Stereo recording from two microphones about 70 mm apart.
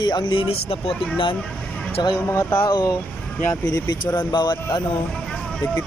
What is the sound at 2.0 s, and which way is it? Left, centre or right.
Speech, left.